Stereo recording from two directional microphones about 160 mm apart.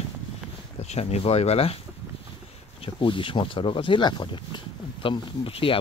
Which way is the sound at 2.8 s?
35° left (ahead or behind).